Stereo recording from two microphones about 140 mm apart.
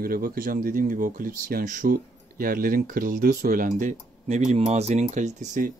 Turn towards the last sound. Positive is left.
turn(degrees=-60)  # may be behind; listen again after turning